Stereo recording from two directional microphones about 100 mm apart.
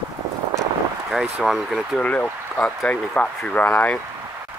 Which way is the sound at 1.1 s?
5° right (ahead or behind).